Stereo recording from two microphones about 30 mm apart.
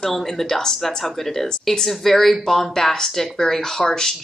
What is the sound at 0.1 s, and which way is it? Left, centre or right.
Speech, centre.